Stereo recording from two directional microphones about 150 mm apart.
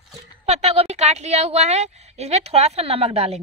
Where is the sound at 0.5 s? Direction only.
45° right (ahead or behind).